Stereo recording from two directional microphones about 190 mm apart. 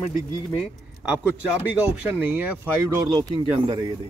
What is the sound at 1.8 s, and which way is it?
Speech, 10° right (ahead or behind).